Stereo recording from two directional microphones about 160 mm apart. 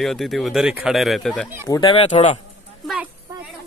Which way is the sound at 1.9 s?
40° left (ahead or behind).